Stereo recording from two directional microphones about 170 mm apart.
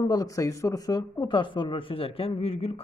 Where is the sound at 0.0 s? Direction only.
20° left (ahead or behind).